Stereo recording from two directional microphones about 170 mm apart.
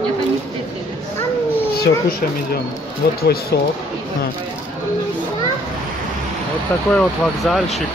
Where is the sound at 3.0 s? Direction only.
65° left (ahead or behind).